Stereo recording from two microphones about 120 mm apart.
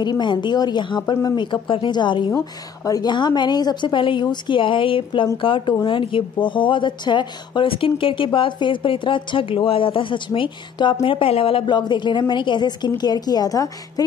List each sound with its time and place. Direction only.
0.0 s a woman's voice: 40° left (ahead or behind)
2.3 s a woman's voice: 30° left (ahead or behind)